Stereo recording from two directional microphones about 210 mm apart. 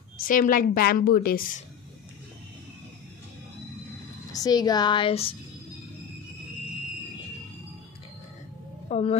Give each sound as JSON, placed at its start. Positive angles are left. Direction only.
{"t": 0.2, "sound": "a woman's voice", "side_deg": 40}
{"t": 4.3, "sound": "speech", "side_deg": 15}
{"t": 8.8, "sound": "speech", "side_deg": 30}